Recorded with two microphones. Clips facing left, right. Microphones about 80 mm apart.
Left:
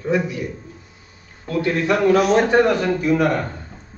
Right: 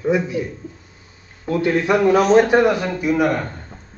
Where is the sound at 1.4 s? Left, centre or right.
Right.